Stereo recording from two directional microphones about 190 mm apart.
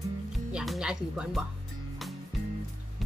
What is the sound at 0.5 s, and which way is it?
Speech, 5° right (ahead or behind).